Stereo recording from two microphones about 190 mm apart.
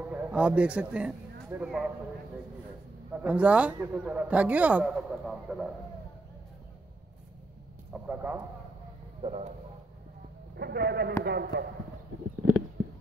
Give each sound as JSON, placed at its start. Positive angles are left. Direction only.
{"t": 0.1, "sound": "a man's voice", "side_deg": -5}
{"t": 3.1, "sound": "a man's voice", "side_deg": -5}
{"t": 7.9, "sound": "a man's voice", "side_deg": -10}
{"t": 9.2, "sound": "speech", "side_deg": -35}
{"t": 10.5, "sound": "speech", "side_deg": -60}